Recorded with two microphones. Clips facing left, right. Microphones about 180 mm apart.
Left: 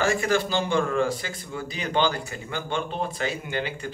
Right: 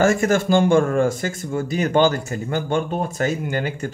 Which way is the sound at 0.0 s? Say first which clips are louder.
Right 6 dB; 45° right (ahead or behind).